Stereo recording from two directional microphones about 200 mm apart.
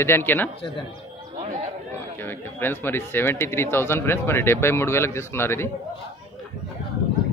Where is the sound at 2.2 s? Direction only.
10° left (ahead or behind).